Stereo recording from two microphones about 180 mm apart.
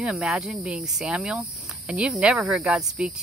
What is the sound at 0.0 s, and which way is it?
Speech, 5° right (ahead or behind).